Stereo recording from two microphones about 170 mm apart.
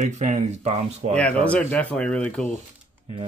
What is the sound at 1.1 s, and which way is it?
Speech, 5° left (ahead or behind).